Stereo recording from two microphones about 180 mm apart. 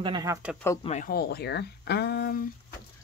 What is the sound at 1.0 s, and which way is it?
Speech, 60° left (ahead or behind).